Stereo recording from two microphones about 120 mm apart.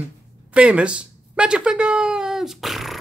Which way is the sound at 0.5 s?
10° right (ahead or behind).